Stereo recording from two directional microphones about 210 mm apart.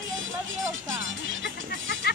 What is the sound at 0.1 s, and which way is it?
Music, 65° right (ahead or behind).